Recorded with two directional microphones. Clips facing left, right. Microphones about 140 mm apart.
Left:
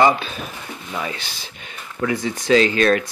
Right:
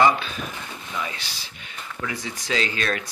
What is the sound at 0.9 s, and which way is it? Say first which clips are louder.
Speech: left 4 dB; 50° left (ahead or behind).